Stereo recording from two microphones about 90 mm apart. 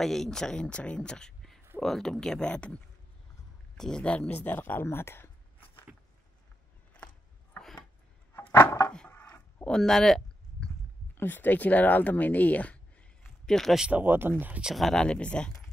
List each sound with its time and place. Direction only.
0.0 s speech: 5° left (ahead or behind); by 5.9 s 25° left (ahead or behind)
7.5 s a sound: 10° left (ahead or behind)
8.4 s chopping: 25° left (ahead or behind)
9.1 s a sound: 25° left (ahead or behind)
9.7 s a sound: 5° left (ahead or behind)
11.1 s speech: 20° left (ahead or behind)
13.5 s speech: centre (ahead or behind)
13.8 s speech: 20° right (ahead or behind)
14.6 s speech: centre (ahead or behind)